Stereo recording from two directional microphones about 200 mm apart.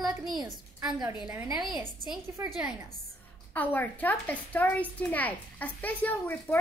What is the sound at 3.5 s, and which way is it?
A child's voice, 10° left (ahead or behind).